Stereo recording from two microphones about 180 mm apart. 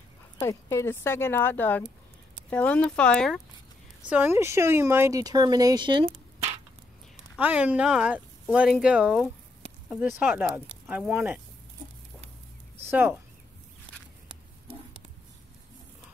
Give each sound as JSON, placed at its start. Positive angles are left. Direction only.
{"t": 0.4, "sound": "speech", "side_deg": 15}
{"t": 4.1, "sound": "speech", "side_deg": -10}
{"t": 7.3, "sound": "speech", "side_deg": -5}